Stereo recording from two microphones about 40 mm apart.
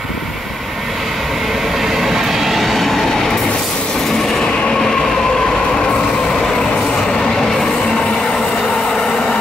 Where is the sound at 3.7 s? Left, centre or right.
Left.